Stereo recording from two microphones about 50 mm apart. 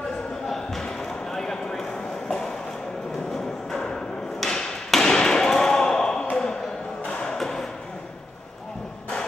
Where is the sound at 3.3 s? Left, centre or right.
Centre.